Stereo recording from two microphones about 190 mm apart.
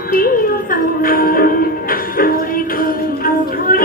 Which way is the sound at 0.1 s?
45° left (ahead or behind).